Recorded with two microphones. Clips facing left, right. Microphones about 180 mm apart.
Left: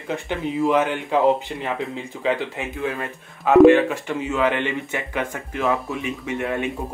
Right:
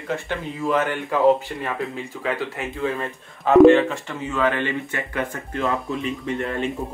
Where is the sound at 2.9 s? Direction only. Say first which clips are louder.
Right 1 dB; 5° left (ahead or behind).